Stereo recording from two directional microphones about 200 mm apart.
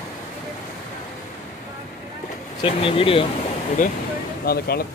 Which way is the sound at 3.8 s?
40° left (ahead or behind).